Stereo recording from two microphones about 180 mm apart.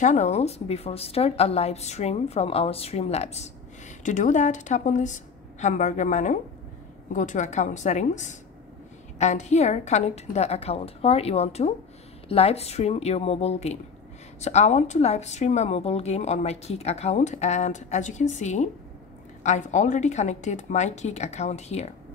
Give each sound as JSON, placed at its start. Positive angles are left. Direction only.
{"t": 0.0, "sound": "a woman's voice", "side_deg": 40}